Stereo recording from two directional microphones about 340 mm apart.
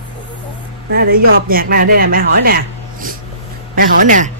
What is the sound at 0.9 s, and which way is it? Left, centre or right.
Speech, right.